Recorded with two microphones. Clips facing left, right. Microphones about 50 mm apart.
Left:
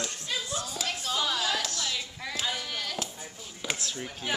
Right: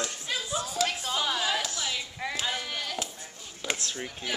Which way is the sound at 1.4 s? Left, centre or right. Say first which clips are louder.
Right 1 dB; centre.